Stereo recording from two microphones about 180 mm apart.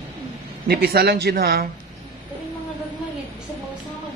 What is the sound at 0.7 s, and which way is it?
Speech, 60° right (ahead or behind).